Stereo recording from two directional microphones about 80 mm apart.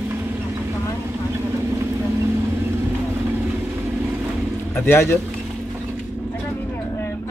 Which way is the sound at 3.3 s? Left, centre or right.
Right.